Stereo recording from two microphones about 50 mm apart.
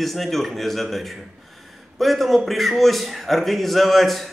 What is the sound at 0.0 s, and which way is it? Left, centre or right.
A man's voice, centre.